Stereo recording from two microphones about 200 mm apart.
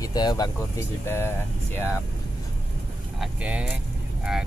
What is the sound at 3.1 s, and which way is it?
Speech, 5° right (ahead or behind).